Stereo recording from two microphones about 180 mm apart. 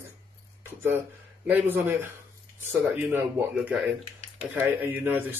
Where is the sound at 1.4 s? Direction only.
10° right (ahead or behind).